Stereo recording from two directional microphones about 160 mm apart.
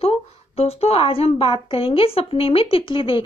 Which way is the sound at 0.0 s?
40° left (ahead or behind).